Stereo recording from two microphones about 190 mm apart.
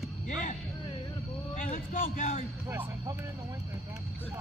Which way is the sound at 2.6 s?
15° right (ahead or behind).